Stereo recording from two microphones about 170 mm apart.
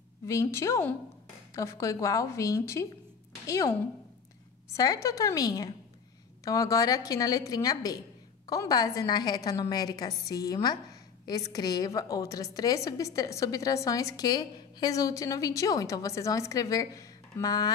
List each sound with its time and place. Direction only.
0.3 s a woman's voice: 15° left (ahead or behind)